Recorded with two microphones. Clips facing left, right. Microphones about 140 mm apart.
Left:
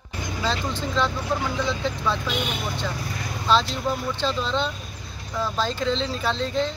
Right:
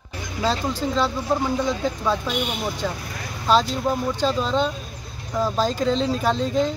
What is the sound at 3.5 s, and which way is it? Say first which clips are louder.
Speech: right 3 dB; 45° right (ahead or behind).